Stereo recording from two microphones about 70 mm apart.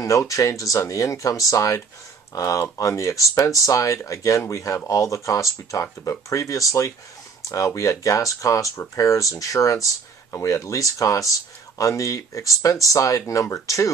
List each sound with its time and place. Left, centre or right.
0.0 s speech: left